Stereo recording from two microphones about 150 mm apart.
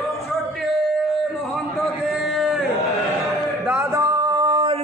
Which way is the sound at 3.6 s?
15° right (ahead or behind).